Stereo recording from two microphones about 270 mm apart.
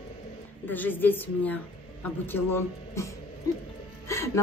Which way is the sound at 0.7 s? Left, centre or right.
Centre.